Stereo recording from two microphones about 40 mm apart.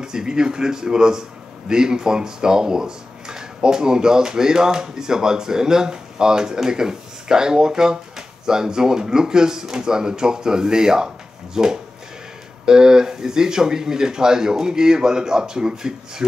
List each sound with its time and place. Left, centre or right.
0.0 s speech: centre